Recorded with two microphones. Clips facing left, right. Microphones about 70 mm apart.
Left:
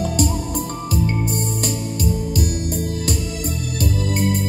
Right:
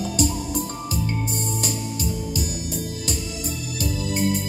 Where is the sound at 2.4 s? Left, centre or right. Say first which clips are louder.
Left 5 dB; left.